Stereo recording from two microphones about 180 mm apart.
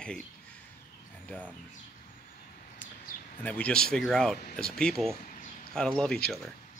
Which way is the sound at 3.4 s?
5° left (ahead or behind).